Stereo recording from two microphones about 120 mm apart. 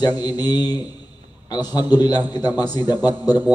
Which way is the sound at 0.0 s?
35° left (ahead or behind).